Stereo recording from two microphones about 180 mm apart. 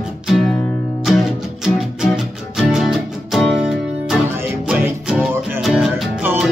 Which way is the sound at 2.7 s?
Centre (ahead or behind).